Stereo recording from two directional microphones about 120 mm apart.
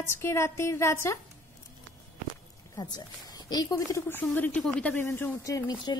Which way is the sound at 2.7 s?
35° left (ahead or behind).